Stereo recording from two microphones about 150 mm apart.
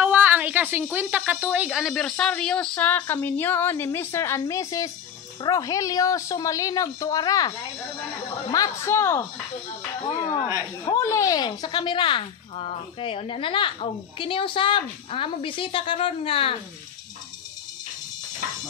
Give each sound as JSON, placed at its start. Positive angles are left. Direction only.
{"t": 0.0, "sound": "a sound", "side_deg": -10}
{"t": 0.9, "sound": "a woman's voice", "side_deg": -10}
{"t": 8.8, "sound": "speech", "side_deg": 15}
{"t": 10.9, "sound": "speech", "side_deg": 20}